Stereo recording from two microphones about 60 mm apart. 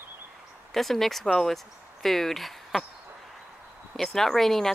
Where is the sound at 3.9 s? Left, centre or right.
Centre.